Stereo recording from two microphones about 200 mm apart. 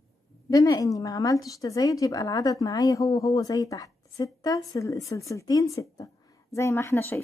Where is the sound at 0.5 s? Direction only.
15° left (ahead or behind).